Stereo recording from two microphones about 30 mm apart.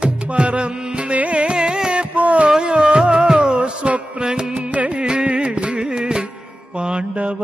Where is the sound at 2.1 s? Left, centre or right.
Right.